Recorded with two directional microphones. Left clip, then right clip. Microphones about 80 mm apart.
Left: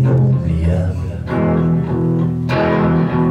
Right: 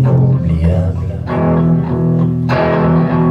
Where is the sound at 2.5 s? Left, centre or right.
Right.